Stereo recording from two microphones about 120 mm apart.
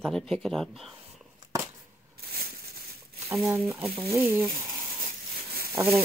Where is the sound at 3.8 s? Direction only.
20° right (ahead or behind).